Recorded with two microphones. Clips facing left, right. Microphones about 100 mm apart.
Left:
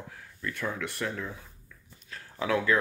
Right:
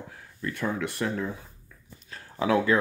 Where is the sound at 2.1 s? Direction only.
15° right (ahead or behind).